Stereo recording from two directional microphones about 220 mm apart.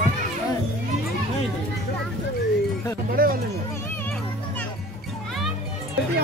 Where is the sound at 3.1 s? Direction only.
40° right (ahead or behind).